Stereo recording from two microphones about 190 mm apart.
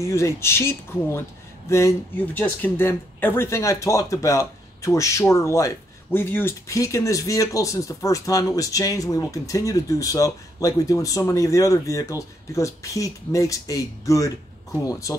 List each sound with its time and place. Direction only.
0.0 s speech: 15° left (ahead or behind)